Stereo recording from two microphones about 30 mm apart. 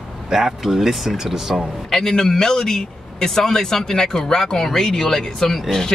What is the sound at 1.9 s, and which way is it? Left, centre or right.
A man's voice, centre.